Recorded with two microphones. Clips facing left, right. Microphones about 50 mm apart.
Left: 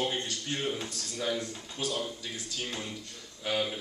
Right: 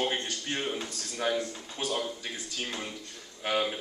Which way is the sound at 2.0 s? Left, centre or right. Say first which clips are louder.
Right 2 dB; right.